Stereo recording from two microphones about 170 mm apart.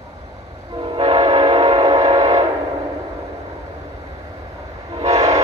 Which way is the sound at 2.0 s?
20° right (ahead or behind).